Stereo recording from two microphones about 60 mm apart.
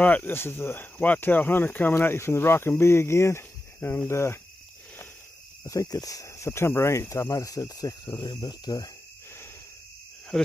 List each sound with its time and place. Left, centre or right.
0.0 s speech: left
0.3 s speech: left
0.9 s speech: left
5.7 s speech: left
10.3 s speech: centre